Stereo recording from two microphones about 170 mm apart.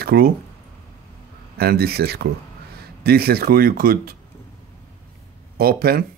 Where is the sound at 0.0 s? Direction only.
65° right (ahead or behind).